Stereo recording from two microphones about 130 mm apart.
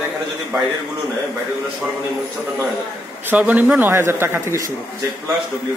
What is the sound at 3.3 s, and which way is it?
Speech, 10° right (ahead or behind).